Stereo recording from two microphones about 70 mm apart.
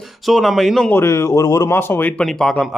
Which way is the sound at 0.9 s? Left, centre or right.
Left.